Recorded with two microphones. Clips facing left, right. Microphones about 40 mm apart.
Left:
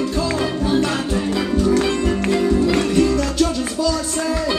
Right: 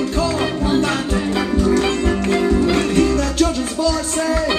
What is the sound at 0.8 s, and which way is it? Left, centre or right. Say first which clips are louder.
Music: right 1 dB; right.